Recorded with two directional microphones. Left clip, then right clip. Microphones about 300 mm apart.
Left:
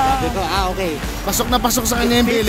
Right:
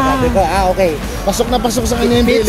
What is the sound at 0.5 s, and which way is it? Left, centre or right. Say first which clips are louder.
Speech: right 7 dB; left.